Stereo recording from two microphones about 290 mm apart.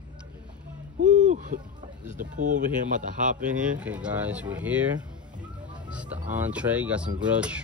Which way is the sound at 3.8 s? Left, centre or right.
Centre.